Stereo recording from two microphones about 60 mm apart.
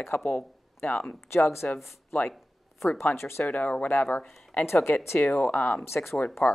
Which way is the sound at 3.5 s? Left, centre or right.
Left.